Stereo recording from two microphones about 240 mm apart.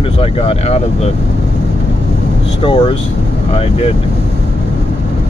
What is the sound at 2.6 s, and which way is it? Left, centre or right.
Speech, left.